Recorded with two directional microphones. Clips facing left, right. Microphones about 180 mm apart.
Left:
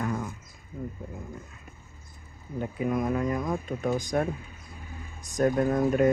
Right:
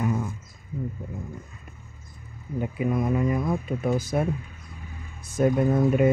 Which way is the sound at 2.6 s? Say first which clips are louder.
Right 2 dB; 5° right (ahead or behind).